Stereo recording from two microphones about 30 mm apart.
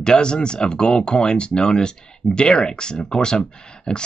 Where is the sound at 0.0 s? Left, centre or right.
Left.